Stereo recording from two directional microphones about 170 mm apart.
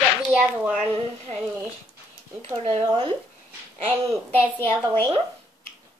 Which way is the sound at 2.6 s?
35° right (ahead or behind).